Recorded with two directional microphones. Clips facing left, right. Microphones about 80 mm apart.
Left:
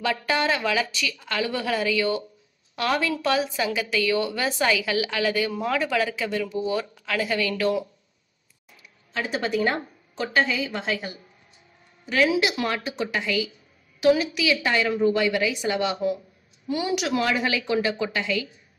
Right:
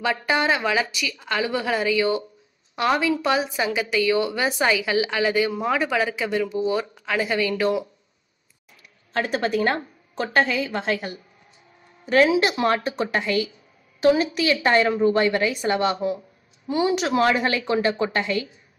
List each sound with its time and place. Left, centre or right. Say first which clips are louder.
0.0 s a woman's voice: right 2 dB; right
9.1 s a woman's voice: right 3 dB; right
16.6 s a woman's voice: right 4 dB; right